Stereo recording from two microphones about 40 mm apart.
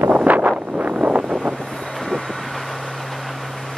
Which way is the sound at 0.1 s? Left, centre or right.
Right.